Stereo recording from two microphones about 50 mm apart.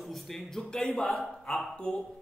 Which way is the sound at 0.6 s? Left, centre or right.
Centre.